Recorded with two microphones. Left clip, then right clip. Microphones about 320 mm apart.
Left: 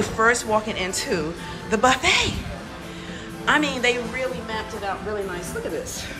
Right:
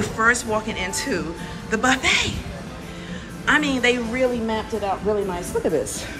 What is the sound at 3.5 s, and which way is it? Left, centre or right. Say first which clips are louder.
Speech: right 1 dB; centre.